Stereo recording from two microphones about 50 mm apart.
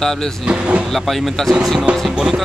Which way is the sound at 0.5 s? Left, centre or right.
Right.